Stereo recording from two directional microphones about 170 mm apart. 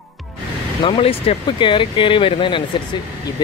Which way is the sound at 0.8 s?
35° left (ahead or behind).